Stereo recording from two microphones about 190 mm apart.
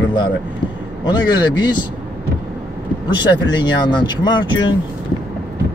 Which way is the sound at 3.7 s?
25° left (ahead or behind).